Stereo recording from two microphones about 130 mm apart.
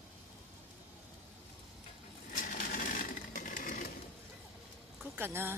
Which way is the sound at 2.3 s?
90° left.